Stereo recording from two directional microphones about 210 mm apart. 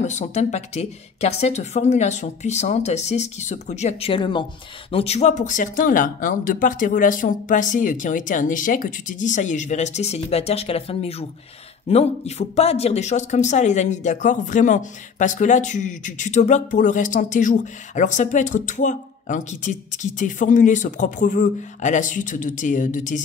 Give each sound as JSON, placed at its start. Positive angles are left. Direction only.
{"t": 0.0, "sound": "speech", "side_deg": 35}